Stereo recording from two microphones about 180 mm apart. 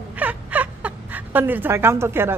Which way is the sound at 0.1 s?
10° right (ahead or behind).